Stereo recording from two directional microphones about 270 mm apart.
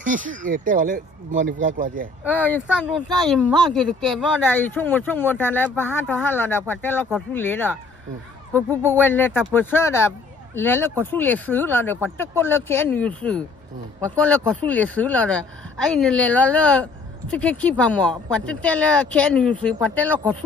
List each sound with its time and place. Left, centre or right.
0.0 s speech: right
2.3 s speech: centre